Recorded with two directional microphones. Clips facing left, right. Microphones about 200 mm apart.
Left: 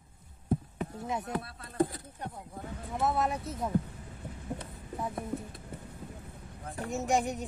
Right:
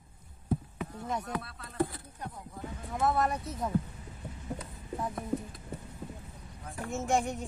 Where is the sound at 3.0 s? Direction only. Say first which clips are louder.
Right 1 dB; centre (ahead or behind).